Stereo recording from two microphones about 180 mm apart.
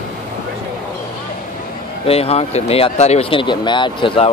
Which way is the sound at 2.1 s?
35° left (ahead or behind).